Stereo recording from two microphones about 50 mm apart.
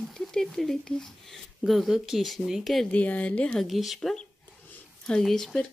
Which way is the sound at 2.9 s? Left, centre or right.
Left.